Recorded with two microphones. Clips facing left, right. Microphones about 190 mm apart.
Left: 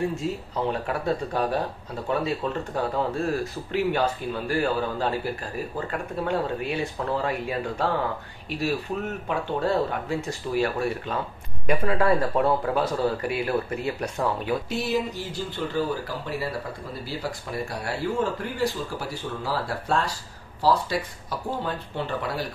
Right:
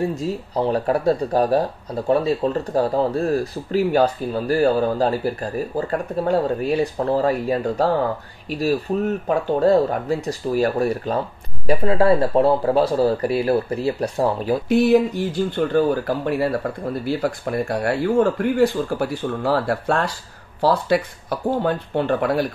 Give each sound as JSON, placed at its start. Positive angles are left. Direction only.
{"t": 0.1, "sound": "a man's voice", "side_deg": -35}
{"t": 14.7, "sound": "speech", "side_deg": -55}